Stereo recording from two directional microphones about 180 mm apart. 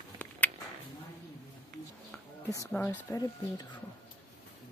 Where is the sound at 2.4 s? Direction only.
15° left (ahead or behind).